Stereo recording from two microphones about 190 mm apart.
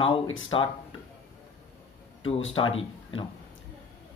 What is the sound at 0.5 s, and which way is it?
Speech, 25° left (ahead or behind).